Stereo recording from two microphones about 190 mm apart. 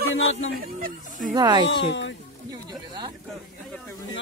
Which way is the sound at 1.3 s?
20° right (ahead or behind).